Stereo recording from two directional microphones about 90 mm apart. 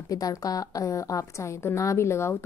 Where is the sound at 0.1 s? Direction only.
40° left (ahead or behind).